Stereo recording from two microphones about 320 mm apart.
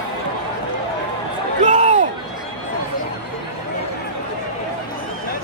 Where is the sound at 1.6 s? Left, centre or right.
Right.